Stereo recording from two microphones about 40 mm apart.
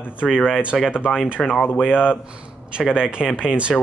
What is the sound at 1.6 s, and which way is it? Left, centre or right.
Speech, left.